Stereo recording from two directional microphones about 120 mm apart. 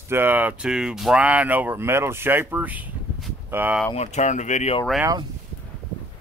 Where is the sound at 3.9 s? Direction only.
70° left (ahead or behind).